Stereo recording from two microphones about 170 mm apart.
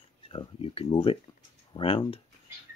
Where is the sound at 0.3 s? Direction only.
35° left (ahead or behind).